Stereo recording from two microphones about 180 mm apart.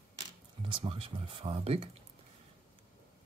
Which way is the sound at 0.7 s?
30° right (ahead or behind).